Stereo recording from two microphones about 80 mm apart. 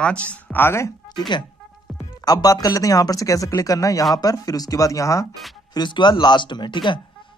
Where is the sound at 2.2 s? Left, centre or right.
Left.